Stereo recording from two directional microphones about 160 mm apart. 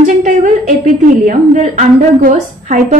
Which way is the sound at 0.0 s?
55° right (ahead or behind).